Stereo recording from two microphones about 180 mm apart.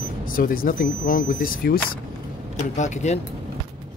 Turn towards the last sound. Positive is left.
turn(degrees=40)  # may be behind; listen again after turning